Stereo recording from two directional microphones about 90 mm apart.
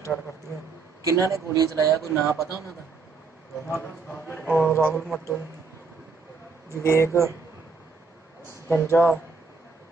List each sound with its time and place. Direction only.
1.0 s speech: 35° right (ahead or behind)
2.3 s speech: 35° left (ahead or behind)
3.6 s speech: 20° left (ahead or behind)
4.9 s a man's voice: centre (ahead or behind)
6.8 s speech: 30° left (ahead or behind)
8.6 s a man's voice: 30° left (ahead or behind)